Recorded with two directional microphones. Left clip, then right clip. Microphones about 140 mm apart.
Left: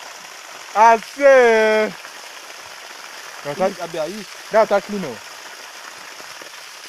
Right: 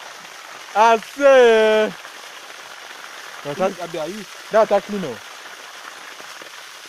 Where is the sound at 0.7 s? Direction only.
30° right (ahead or behind).